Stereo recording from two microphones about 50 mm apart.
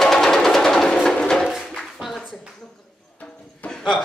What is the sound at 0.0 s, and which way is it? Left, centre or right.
Music, centre.